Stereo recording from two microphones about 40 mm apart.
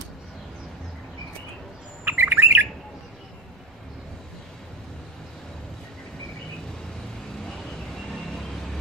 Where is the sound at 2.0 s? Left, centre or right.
Right.